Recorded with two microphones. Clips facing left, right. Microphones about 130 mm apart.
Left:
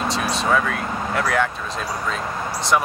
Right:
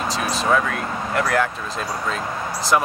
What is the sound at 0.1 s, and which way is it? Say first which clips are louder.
Speech: right 2 dB; centre (ahead or behind).